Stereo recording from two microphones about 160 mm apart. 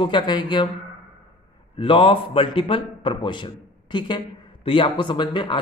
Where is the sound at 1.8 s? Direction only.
35° left (ahead or behind).